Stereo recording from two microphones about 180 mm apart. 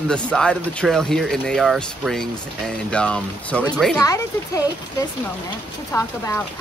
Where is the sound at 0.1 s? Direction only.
5° left (ahead or behind).